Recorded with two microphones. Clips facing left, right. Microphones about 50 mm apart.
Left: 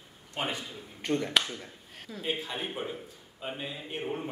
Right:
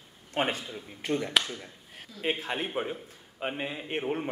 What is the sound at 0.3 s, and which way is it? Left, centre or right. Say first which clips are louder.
Speech: right 5 dB; right.